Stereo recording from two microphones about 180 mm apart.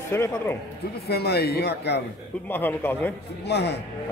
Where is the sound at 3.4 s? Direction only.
65° left (ahead or behind).